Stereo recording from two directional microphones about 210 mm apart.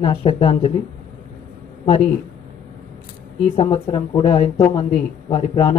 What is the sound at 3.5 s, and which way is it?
Speech, 25° left (ahead or behind).